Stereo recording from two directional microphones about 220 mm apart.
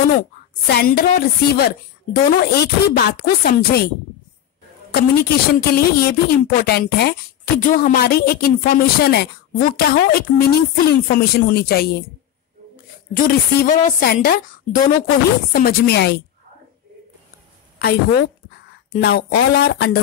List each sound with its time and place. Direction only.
0.1 s a woman's voice: 40° left (ahead or behind)
4.9 s a woman's voice: 45° left (ahead or behind)
13.1 s a woman's voice: 40° left (ahead or behind)
17.7 s a woman's voice: 45° left (ahead or behind)